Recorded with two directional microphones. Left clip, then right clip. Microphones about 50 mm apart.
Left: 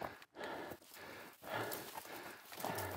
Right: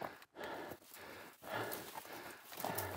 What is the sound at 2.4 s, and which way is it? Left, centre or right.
Horse, centre.